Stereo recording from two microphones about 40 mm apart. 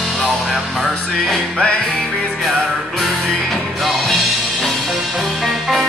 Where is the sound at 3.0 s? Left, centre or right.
Centre.